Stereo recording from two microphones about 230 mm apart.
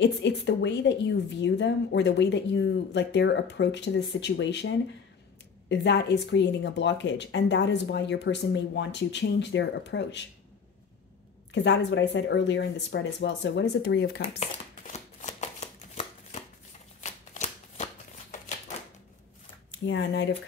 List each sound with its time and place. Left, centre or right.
0.0 s a woman's voice: left
11.5 s a woman's voice: left
14.4 s shuffling cards: left
19.8 s a woman's voice: left